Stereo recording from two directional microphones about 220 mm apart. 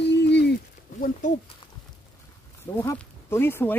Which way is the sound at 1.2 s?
35° left (ahead or behind).